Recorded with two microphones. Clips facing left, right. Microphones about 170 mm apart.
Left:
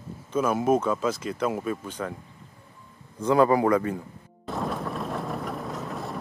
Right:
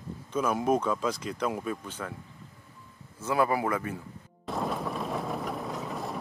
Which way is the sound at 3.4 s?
35° left (ahead or behind).